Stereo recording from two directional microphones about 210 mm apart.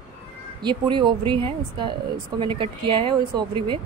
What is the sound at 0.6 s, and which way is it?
Speech, 20° right (ahead or behind).